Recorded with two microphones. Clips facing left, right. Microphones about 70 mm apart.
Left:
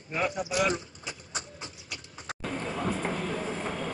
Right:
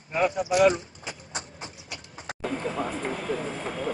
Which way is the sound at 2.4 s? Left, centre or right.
Centre.